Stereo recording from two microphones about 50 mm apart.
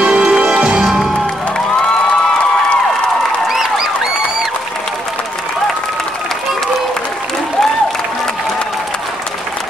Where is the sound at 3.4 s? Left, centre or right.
Centre.